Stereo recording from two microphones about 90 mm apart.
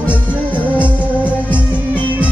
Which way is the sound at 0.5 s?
15° right (ahead or behind).